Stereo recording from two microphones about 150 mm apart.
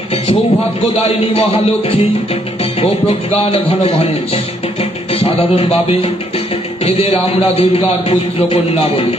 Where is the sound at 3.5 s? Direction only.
40° left (ahead or behind).